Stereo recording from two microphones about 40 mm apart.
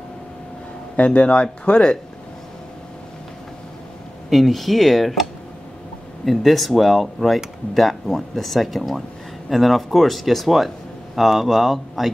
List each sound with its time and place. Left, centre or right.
0.9 s speech: left
4.3 s speech: centre
6.2 s speech: centre